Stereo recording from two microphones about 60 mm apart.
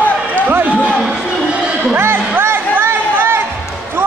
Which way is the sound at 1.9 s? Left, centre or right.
Right.